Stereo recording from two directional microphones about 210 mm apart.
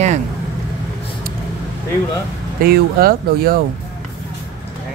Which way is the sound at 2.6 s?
45° right (ahead or behind).